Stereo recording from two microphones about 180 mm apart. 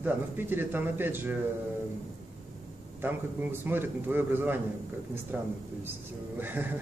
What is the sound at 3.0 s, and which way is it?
A man's voice, 10° right (ahead or behind).